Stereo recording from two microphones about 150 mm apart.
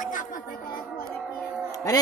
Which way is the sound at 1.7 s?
25° left (ahead or behind).